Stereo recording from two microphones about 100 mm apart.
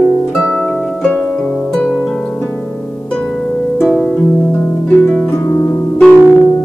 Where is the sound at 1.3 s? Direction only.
10° left (ahead or behind).